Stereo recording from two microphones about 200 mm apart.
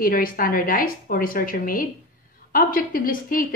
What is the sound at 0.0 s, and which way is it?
A woman's voice, 45° left (ahead or behind).